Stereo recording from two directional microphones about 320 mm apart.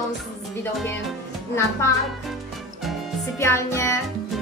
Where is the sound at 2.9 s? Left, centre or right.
Centre.